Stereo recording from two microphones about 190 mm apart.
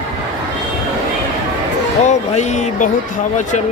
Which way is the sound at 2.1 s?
35° left (ahead or behind).